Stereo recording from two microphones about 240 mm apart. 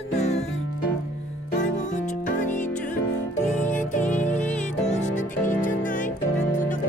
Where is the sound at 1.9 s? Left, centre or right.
Left.